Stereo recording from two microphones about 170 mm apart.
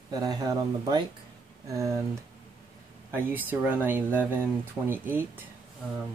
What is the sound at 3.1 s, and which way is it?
Speech, 10° right (ahead or behind).